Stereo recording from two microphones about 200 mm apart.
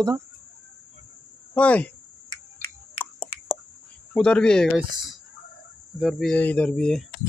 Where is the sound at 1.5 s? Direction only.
5° left (ahead or behind).